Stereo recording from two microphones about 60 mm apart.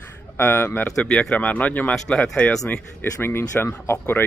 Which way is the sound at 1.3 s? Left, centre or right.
Left.